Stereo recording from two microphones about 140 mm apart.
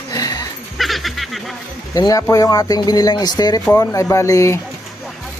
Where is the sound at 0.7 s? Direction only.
Centre (ahead or behind).